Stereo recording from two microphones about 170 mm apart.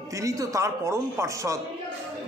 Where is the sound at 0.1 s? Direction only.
20° right (ahead or behind).